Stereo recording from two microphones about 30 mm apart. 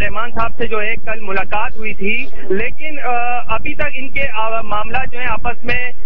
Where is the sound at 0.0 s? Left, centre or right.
Centre.